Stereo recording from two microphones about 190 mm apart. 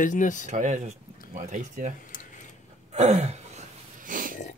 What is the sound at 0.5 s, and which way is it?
A man's voice, 40° right (ahead or behind).